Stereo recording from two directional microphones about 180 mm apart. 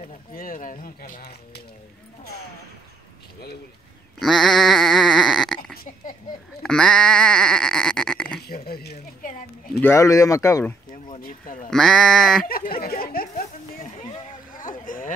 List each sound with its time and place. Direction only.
0.0 s speech: 50° left (ahead or behind)
4.2 s sheep: centre (ahead or behind)
8.6 s speech: 60° left (ahead or behind)
9.8 s speech: 15° left (ahead or behind)
11.1 s speech: 50° left (ahead or behind)
11.7 s speech: centre (ahead or behind)
12.4 s speech: 55° left (ahead or behind)
12.8 s a sound: 55° left (ahead or behind)
14.6 s a sound: 50° left (ahead or behind)